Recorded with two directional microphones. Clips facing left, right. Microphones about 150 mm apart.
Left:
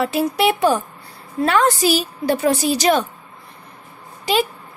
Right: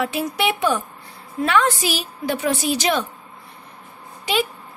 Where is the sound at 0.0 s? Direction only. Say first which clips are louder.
Left 4 dB; 35° left (ahead or behind).